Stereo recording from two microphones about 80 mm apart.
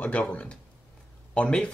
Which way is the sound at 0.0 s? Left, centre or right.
Centre.